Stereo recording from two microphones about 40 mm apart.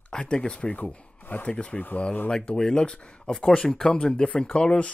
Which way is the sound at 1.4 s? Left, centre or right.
Left.